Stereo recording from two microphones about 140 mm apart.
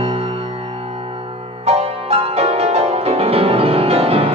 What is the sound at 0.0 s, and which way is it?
Music, 40° right (ahead or behind).